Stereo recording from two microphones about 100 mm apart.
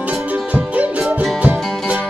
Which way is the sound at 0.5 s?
15° right (ahead or behind).